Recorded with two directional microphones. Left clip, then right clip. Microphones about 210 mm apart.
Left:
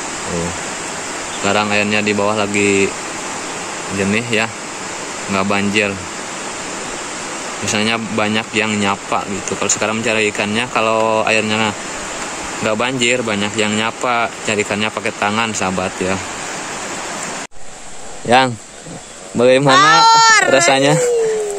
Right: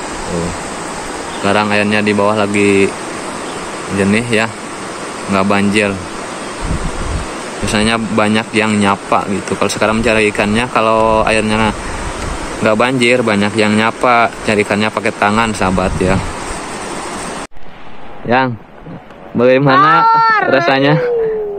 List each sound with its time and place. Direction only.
1.4 s speech: 5° left (ahead or behind)
3.9 s speech: centre (ahead or behind)
7.6 s speech: centre (ahead or behind)
18.3 s speech: 20° left (ahead or behind)